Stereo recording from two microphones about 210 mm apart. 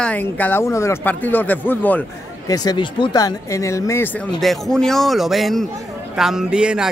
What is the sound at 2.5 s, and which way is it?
Speech, 20° left (ahead or behind).